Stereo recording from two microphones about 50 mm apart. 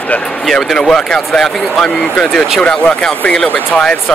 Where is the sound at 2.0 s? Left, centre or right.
Centre.